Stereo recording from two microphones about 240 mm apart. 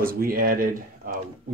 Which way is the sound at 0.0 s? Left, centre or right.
Right.